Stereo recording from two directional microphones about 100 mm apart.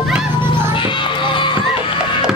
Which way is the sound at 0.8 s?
55° left (ahead or behind).